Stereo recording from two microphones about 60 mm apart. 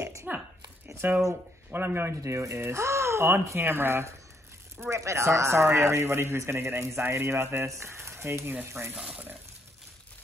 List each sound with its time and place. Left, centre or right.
0.0 s a sound: right
1.0 s speech: right
2.2 s a man's voice: right
4.7 s a man's voice: right
9.0 s speech: right